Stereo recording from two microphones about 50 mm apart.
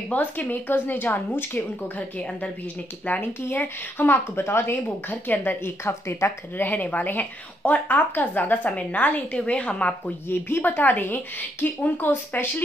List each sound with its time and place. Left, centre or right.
0.1 s a woman's voice: left
4.4 s speech: left
4.8 s a woman's voice: left
5.6 s speech: left
6.6 s a woman's voice: left
10.3 s a woman's voice: left